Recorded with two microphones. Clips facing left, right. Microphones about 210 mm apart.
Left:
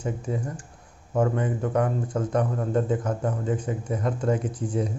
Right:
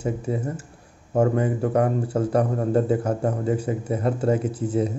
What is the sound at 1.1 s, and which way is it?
Speech, 30° right (ahead or behind).